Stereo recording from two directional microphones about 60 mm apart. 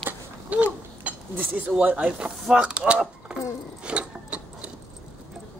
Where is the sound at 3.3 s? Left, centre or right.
Centre.